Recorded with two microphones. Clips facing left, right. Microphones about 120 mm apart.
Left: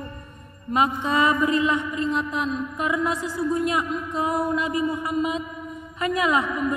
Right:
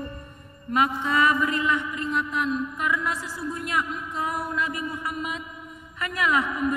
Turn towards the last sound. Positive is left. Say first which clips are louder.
# left 3 dB
turn(degrees=20)  # may be behind; listen again after turning